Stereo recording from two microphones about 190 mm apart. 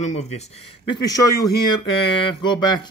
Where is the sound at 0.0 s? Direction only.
35° left (ahead or behind).